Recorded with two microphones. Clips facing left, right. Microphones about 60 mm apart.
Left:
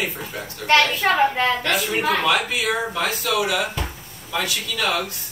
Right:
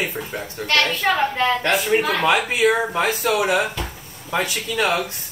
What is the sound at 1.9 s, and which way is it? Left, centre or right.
Speech, centre.